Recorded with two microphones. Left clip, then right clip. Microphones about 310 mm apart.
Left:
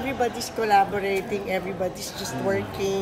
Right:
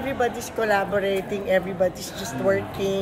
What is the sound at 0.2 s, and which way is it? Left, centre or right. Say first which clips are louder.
Speech: right 2 dB; centre.